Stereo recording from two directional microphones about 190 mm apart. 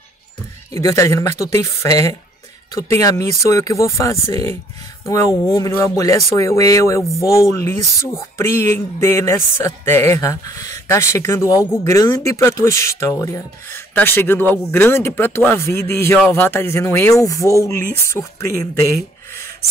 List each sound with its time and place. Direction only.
0.7 s speech: 15° left (ahead or behind)